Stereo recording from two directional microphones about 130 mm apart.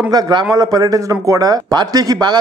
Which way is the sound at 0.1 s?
35° right (ahead or behind).